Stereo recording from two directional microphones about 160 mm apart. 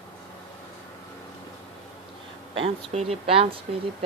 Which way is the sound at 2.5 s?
40° right (ahead or behind).